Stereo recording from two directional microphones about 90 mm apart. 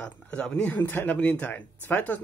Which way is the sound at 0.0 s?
15° left (ahead or behind).